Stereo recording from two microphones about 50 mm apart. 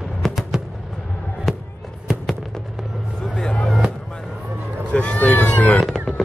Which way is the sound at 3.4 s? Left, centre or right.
Centre.